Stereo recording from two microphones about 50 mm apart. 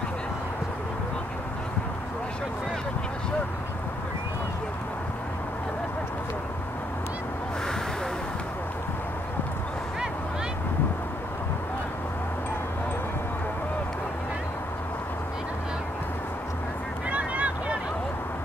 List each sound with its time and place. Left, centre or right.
17.1 s vehicle: right